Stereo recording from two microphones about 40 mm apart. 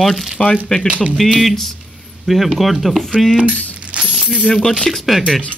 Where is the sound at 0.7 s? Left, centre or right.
Left.